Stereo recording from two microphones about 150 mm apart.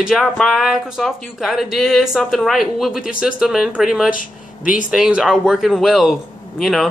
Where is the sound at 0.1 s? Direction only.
Centre (ahead or behind).